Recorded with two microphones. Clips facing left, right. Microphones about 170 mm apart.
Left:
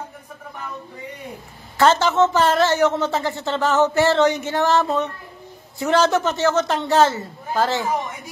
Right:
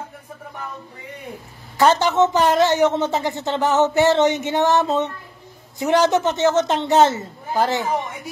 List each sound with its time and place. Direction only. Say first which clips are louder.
1.8 s speech: even; 15° right (ahead or behind)